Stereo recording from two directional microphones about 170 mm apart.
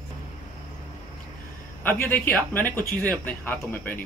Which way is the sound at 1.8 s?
10° left (ahead or behind).